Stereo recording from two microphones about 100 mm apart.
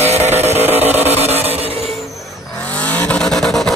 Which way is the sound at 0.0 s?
90° right.